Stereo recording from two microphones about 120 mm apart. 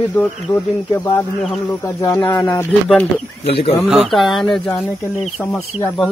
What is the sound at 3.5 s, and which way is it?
Speech, 55° left (ahead or behind).